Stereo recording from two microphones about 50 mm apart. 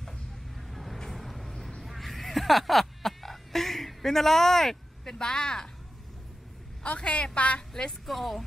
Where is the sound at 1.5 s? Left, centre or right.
Centre.